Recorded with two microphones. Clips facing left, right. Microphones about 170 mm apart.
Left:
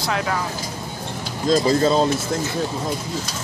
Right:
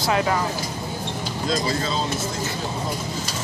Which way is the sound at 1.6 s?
45° left (ahead or behind).